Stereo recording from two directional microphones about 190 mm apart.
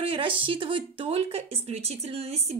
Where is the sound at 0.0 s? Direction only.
30° right (ahead or behind).